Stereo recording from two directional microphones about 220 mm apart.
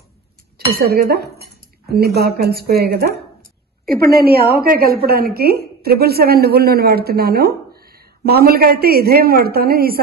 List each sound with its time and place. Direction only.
0.7 s a woman's voice: 45° right (ahead or behind)